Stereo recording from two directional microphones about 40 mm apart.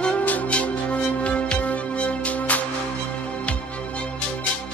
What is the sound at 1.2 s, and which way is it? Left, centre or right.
Music, left.